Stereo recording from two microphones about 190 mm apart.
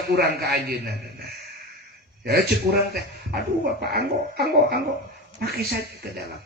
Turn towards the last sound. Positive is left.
turn(degrees=-60)  # may be behind; listen again after turning